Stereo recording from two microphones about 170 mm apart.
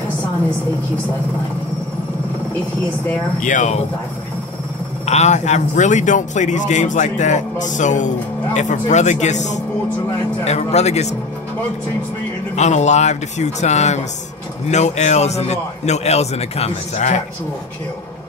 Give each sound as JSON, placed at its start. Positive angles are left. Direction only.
{"t": 3.3, "sound": "a man's voice", "side_deg": 45}
{"t": 5.0, "sound": "a man's voice", "side_deg": 40}
{"t": 12.5, "sound": "a man's voice", "side_deg": 45}